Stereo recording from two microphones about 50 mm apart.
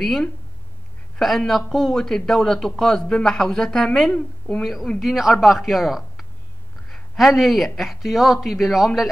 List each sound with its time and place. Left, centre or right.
1.2 s a man's voice: centre
4.6 s speech: centre